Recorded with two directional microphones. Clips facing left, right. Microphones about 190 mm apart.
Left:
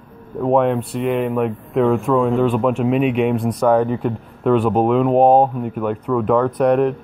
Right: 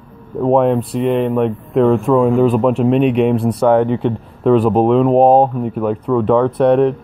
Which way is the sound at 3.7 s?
25° right (ahead or behind).